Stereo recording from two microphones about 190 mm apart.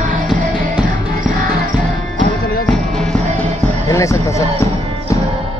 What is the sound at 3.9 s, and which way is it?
Music, 15° left (ahead or behind).